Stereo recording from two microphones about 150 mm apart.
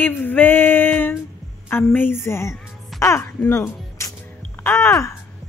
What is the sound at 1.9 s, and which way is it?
Speech, 15° left (ahead or behind).